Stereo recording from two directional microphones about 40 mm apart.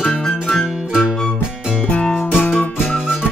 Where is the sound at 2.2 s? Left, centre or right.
Left.